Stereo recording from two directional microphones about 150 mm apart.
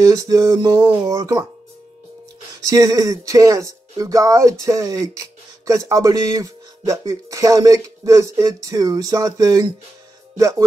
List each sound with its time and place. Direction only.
0.0 s speech: 20° right (ahead or behind)
2.6 s speech: 20° right (ahead or behind)